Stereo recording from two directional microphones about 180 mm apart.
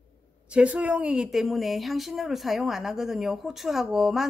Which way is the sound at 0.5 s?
5° right (ahead or behind).